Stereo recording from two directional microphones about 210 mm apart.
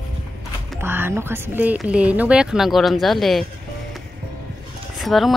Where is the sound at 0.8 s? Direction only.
10° right (ahead or behind).